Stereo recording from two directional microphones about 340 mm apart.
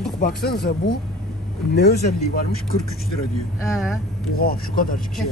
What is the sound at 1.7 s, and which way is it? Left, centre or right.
Speech, left.